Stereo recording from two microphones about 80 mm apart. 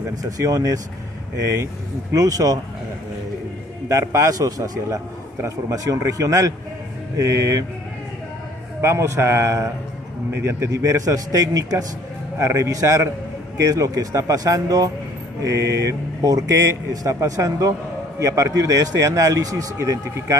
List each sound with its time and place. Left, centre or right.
0.0 s a man's voice: right
3.9 s a man's voice: right
4.7 s a man's voice: right
8.8 s a man's voice: right